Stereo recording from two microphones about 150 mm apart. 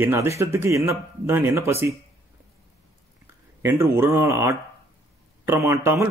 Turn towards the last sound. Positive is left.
turn(degrees=-15)  # may be behind; listen again after turning